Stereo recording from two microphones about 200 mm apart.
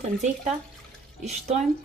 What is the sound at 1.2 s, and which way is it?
Speech, 35° right (ahead or behind).